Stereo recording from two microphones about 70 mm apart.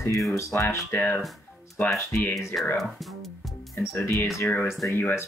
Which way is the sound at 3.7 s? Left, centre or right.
Left.